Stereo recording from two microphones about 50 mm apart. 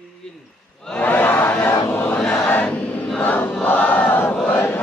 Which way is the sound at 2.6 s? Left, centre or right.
Left.